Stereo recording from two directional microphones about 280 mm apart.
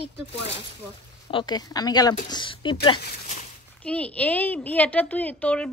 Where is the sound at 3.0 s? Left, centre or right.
Left.